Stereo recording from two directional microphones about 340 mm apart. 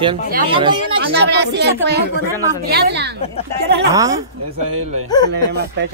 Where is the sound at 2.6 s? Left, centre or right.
Right.